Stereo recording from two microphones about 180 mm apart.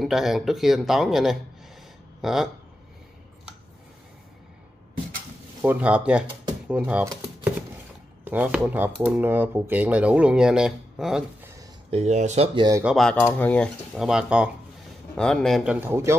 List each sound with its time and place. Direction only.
0.0 s speech: centre (ahead or behind)
5.6 s speech: 10° right (ahead or behind)
8.2 s speech: 10° right (ahead or behind)
11.9 s speech: 40° right (ahead or behind)
12.5 s speech: 20° right (ahead or behind)
12.8 s speech: centre (ahead or behind); by 16.2 s 15° right (ahead or behind)